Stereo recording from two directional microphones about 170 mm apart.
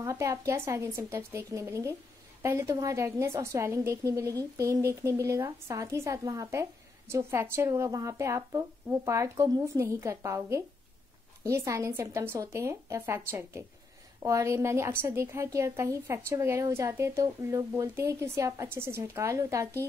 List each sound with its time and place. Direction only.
0.0 s a woman's voice: 20° right (ahead or behind)